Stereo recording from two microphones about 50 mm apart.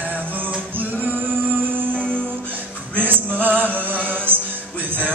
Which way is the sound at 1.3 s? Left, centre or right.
Right.